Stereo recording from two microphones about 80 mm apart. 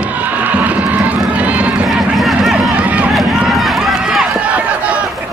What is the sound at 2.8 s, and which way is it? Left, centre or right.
Run, centre.